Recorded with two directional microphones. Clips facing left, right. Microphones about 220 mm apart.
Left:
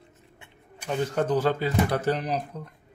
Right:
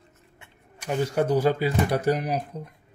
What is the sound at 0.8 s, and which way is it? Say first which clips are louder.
Speech: right 2 dB; 10° right (ahead or behind).